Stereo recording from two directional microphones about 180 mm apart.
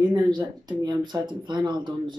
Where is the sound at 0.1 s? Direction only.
25° right (ahead or behind).